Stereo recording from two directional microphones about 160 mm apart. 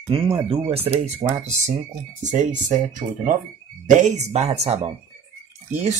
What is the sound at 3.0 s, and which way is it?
Speech, 50° right (ahead or behind).